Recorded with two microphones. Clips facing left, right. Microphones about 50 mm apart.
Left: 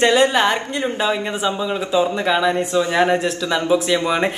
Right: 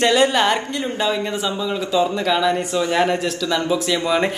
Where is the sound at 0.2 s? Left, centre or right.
Centre.